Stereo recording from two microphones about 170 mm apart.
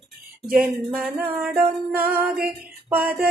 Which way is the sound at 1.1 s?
10° right (ahead or behind).